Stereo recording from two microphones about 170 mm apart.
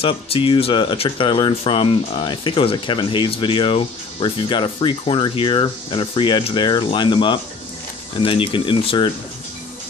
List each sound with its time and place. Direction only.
0.0 s speech: 35° left (ahead or behind)